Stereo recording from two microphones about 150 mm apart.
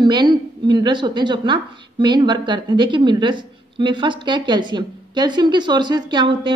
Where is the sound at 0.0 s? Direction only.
30° right (ahead or behind).